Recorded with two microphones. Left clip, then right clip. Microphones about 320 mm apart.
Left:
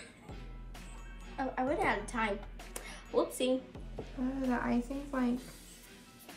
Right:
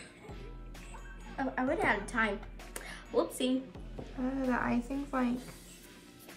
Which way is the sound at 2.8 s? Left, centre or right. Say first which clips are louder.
Right 1 dB; centre.